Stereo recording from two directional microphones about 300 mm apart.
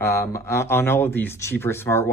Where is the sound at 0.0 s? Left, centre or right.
Centre.